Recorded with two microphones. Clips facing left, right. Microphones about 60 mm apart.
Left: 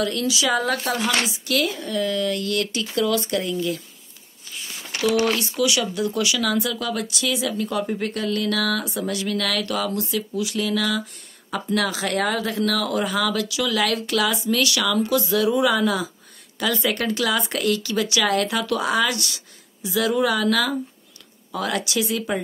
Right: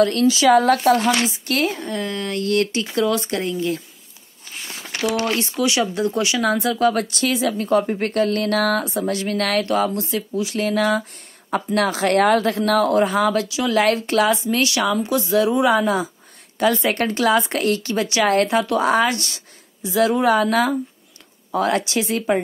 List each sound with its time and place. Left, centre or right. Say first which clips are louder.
0.0 s speech: right 7 dB; right
1.2 s speech: right 2 dB; right
5.2 s speech: even; right